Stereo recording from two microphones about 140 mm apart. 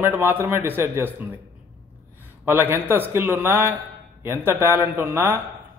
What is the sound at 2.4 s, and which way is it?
A man's voice, 15° right (ahead or behind).